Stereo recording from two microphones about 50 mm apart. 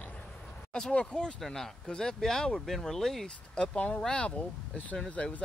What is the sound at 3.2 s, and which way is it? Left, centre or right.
Speech, centre.